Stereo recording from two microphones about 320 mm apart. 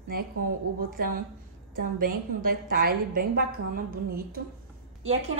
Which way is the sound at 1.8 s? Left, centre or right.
Right.